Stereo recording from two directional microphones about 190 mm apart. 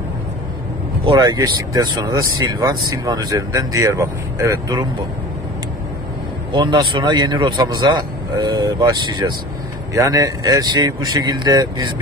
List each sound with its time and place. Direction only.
1.0 s speech: 20° right (ahead or behind)
6.5 s speech: 25° right (ahead or behind)